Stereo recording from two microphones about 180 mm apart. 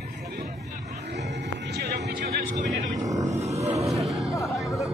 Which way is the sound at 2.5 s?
40° right (ahead or behind).